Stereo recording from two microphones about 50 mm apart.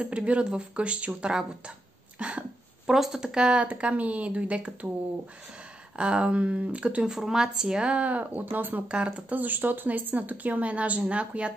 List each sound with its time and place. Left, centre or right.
0.0 s speech: right
2.1 s cough: right
2.9 s speech: centre
5.9 s speech: right
7.1 s speech: centre; by 8.8 s right
8.8 s speech: right
9.3 s speech: right